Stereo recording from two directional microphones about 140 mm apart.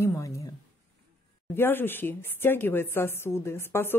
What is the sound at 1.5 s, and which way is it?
Speech, 15° left (ahead or behind).